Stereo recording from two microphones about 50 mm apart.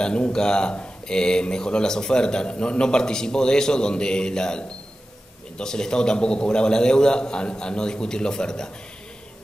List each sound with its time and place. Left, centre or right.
0.3 s speech: centre